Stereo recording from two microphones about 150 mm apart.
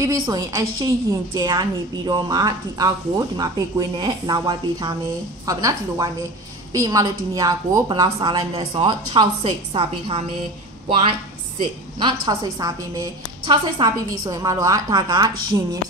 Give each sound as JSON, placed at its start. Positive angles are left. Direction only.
{"t": 0.0, "sound": "a woman's voice", "side_deg": -25}
{"t": 12.0, "sound": "a woman's voice", "side_deg": -30}